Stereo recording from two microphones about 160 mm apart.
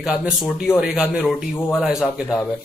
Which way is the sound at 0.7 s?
5° right (ahead or behind).